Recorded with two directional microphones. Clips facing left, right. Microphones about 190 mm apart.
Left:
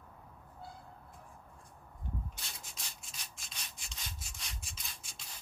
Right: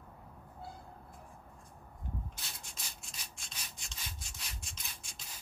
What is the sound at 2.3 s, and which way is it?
Rub, centre (ahead or behind).